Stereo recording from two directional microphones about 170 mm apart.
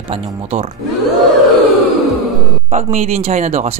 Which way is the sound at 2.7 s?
40° right (ahead or behind).